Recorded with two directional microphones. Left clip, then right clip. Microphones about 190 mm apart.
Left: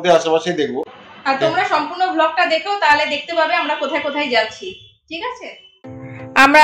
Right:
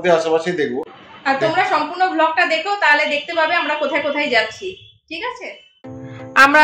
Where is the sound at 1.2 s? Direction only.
5° right (ahead or behind).